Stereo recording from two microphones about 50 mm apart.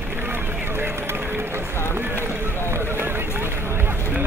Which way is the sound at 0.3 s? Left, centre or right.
Right.